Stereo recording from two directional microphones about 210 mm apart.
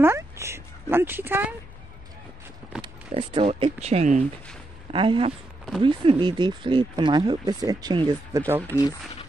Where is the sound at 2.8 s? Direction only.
25° right (ahead or behind).